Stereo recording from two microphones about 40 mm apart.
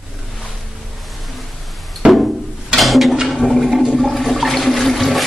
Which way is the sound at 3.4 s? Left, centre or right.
Centre.